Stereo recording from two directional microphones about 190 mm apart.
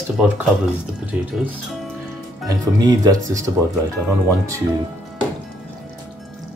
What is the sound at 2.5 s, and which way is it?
Speech, 20° right (ahead or behind).